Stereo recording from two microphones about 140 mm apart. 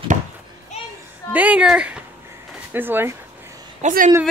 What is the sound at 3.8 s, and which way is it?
Speech, 75° right (ahead or behind).